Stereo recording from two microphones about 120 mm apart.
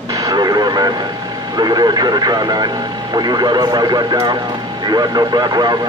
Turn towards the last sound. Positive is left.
turn(degrees=-35)  # may be behind; listen again after turning